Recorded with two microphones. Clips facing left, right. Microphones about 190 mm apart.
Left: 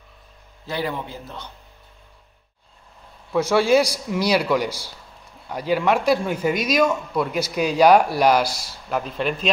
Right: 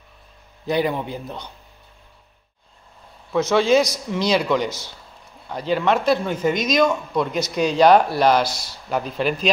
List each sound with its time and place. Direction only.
0.7 s a man's voice: 15° right (ahead or behind)
3.3 s speech: 10° left (ahead or behind)